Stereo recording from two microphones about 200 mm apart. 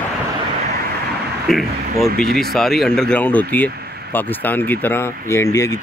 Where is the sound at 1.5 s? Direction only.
Centre (ahead or behind).